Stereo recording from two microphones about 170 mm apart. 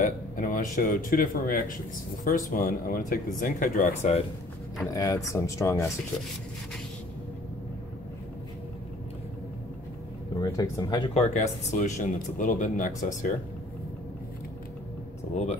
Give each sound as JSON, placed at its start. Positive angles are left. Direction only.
{"t": 0.0, "sound": "speech", "side_deg": 50}
{"t": 4.7, "sound": "speech", "side_deg": 20}
{"t": 10.3, "sound": "speech", "side_deg": 25}
{"t": 11.1, "sound": "speech", "side_deg": 45}